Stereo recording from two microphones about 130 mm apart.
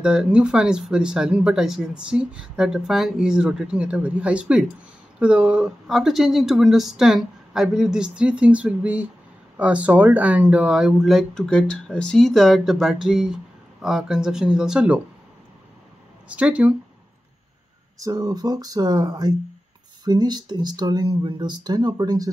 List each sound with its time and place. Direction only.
0.0 s speech: 5° right (ahead or behind)
16.3 s speech: 10° right (ahead or behind)
17.9 s speech: 25° right (ahead or behind)